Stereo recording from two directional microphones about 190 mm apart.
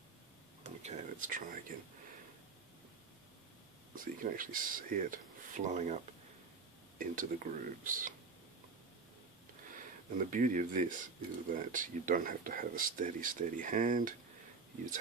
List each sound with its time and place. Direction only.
0.7 s a sound: 40° right (ahead or behind)
3.9 s speech: 45° right (ahead or behind)
7.0 s speech: 45° right (ahead or behind)
10.1 s speech: 45° right (ahead or behind)